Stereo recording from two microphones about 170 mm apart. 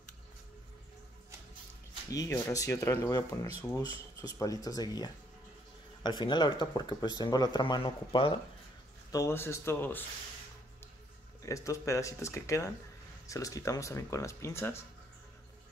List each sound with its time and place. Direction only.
2.0 s speech: 20° left (ahead or behind)
9.1 s speech: 15° left (ahead or behind)
11.4 s speech: 20° left (ahead or behind)